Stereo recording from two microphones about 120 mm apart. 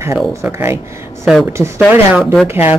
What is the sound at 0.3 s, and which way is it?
Speech, 20° right (ahead or behind).